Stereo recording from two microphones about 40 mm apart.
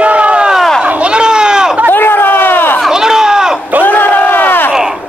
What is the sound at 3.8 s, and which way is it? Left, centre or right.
Crowd, left.